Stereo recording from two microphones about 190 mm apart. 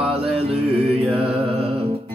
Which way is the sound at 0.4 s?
30° right (ahead or behind).